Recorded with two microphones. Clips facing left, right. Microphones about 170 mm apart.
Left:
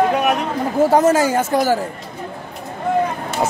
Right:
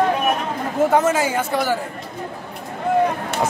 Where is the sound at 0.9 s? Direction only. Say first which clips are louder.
Left 5 dB; 40° left (ahead or behind).